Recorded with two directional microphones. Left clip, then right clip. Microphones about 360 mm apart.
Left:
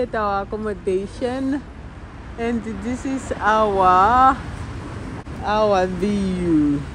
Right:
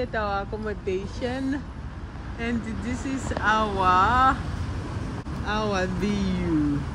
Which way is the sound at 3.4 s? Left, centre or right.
Centre.